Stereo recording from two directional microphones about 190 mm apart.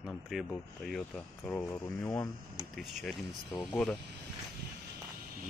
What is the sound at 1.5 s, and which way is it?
Speech, 15° left (ahead or behind).